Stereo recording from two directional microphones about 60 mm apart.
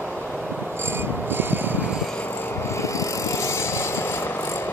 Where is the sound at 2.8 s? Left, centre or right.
Left.